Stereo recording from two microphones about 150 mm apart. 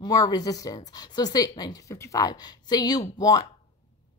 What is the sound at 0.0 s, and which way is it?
A woman's voice, 25° left (ahead or behind).